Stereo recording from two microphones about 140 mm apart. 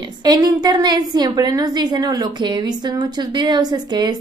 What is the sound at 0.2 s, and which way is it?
A woman's voice, 30° right (ahead or behind).